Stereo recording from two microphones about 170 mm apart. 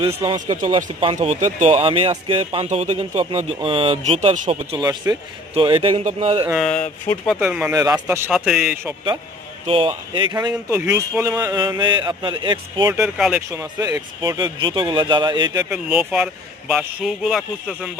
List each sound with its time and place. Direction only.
0.2 s speech: 35° right (ahead or behind)
5.1 s speech: 15° right (ahead or behind)
5.5 s speech: 30° right (ahead or behind)
6.5 s a man's voice: 5° left (ahead or behind)
7.3 s speech: 5° right (ahead or behind)
7.7 s speech: 20° right (ahead or behind)
8.3 s a man's voice: 5° right (ahead or behind)
9.7 s speech: 30° right (ahead or behind)
10.5 s speech: 10° right (ahead or behind)
12.9 s speech: 5° right (ahead or behind)
13.5 s speech: 20° right (ahead or behind)
15.7 s a man's voice: 5° right (ahead or behind)